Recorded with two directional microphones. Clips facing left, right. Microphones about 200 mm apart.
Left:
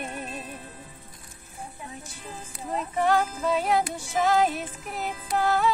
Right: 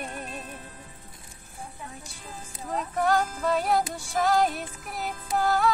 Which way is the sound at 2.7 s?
5° left (ahead or behind).